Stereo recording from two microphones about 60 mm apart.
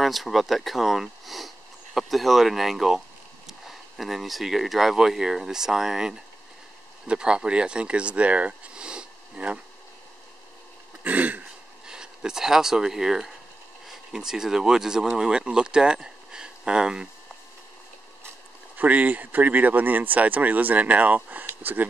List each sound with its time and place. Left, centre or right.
0.0 s speech: centre
11.1 s speech: right
11.9 s speech: centre
18.8 s speech: right